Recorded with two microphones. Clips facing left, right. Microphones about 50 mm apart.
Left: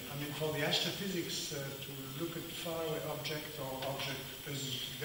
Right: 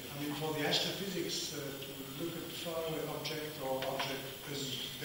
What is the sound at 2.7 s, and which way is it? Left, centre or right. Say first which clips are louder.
Speech: right 1 dB; left.